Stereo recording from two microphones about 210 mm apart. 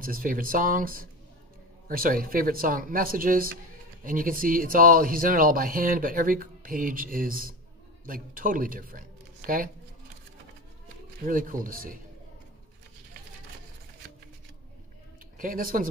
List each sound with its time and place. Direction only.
0.0 s speech: 40° right (ahead or behind)
11.2 s speech: 40° right (ahead or behind)
15.3 s speech: 40° right (ahead or behind)